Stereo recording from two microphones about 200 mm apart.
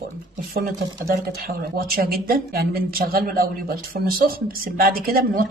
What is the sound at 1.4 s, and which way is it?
A woman's voice, 45° right (ahead or behind).